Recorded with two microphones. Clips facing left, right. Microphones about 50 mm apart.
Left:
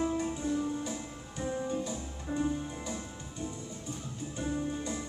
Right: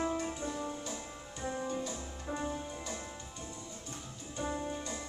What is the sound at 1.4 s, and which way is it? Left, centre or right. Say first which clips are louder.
Music: left 3 dB; centre.